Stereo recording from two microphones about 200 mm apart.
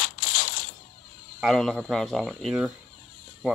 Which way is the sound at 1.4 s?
Centre (ahead or behind).